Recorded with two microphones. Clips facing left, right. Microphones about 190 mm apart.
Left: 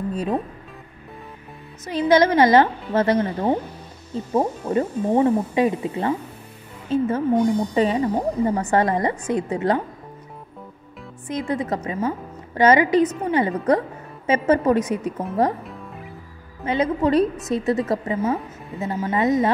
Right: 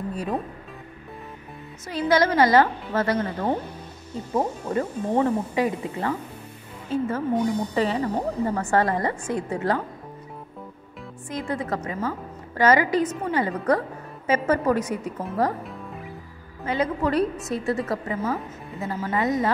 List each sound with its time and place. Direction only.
1.9 s a woman's voice: 20° left (ahead or behind)
4.3 s a woman's voice: 10° left (ahead or behind)
5.5 s a woman's voice: 20° left (ahead or behind)
7.3 s a woman's voice: 10° left (ahead or behind)
7.7 s a woman's voice: 20° left (ahead or behind)
8.0 s a woman's voice: 10° left (ahead or behind)
11.2 s a woman's voice: 20° left (ahead or behind)
15.6 s music: centre (ahead or behind)
16.6 s a woman's voice: 20° left (ahead or behind)